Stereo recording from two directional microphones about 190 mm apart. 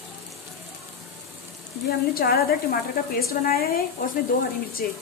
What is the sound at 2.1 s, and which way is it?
A woman's voice, 50° left (ahead or behind).